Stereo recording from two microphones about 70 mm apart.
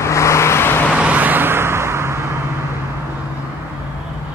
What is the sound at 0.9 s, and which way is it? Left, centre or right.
Vehicle, right.